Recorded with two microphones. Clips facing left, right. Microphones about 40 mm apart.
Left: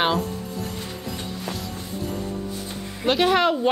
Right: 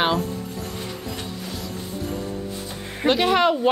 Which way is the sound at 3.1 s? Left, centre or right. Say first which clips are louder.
Right 1 dB; centre.